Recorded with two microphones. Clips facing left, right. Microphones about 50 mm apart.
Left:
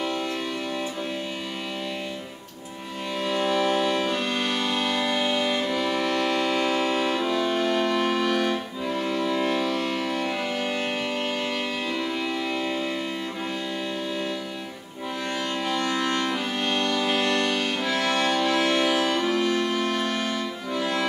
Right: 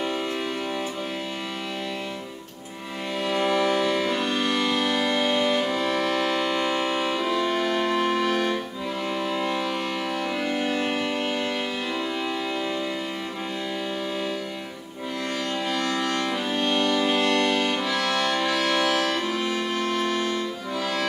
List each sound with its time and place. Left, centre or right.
3.3 s music: right
4.9 s civil defense siren: centre
5.7 s music: centre
16.0 s music: centre
18.6 s music: centre
19.1 s accordion: centre